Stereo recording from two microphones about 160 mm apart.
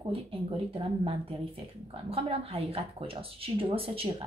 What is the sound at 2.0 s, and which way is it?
A woman's voice, 35° right (ahead or behind).